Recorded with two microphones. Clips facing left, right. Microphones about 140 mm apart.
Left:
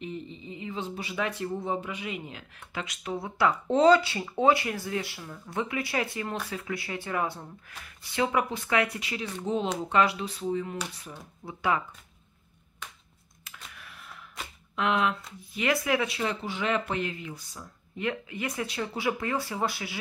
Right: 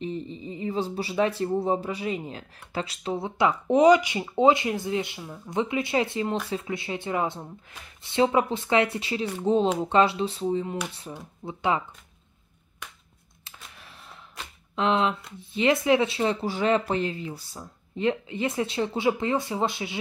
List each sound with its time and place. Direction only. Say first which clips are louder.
0.0 s speech: right 5 dB; 35° right (ahead or behind)
13.4 s a sound: even; 30° right (ahead or behind)
14.8 s speech: right 3 dB; 25° right (ahead or behind)